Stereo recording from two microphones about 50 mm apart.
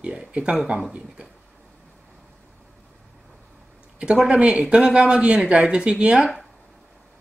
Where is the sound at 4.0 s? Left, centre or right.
Centre.